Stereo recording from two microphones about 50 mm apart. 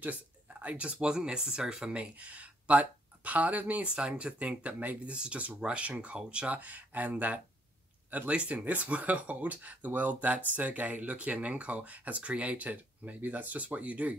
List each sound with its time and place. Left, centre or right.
0.0 s speech: right
5.1 s speech: centre